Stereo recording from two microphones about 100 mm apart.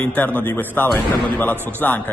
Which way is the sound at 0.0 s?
15° left (ahead or behind).